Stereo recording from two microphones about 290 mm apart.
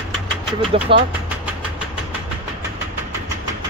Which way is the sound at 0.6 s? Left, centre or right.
Centre.